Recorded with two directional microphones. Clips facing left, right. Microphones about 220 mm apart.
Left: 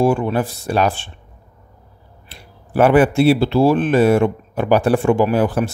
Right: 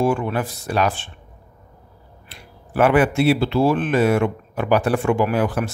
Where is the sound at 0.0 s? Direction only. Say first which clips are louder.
Left 4 dB; 30° left (ahead or behind).